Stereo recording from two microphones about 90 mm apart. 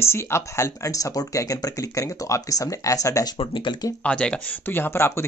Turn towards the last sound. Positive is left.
turn(degrees=25)  # may be behind; listen again after turning